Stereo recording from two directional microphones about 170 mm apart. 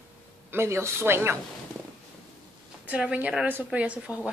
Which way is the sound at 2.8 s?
5° right (ahead or behind).